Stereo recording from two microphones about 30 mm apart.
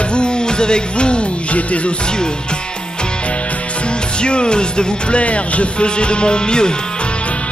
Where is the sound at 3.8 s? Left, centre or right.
Left.